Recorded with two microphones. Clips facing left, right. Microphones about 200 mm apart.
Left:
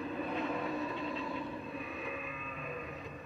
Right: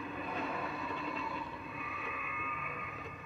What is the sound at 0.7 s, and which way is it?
Vehicle, 40° left (ahead or behind).